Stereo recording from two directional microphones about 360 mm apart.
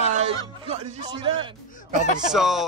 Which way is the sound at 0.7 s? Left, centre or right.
Centre.